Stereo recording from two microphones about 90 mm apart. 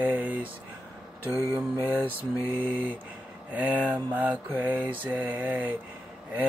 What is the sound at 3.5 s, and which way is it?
Mantra, 20° right (ahead or behind).